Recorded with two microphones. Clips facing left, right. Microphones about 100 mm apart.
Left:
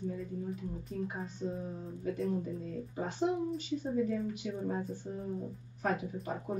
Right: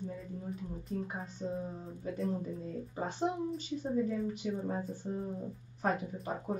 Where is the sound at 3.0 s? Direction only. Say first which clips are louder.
Left 2 dB; 35° right (ahead or behind).